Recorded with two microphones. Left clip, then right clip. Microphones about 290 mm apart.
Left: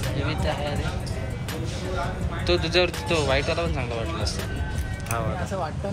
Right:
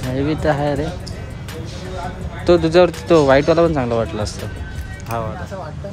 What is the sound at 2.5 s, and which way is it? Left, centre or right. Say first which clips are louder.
Speech: right 10 dB; right.